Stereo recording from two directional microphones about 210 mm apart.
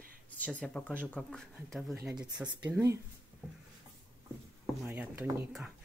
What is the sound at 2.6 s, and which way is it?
Speech, 10° right (ahead or behind).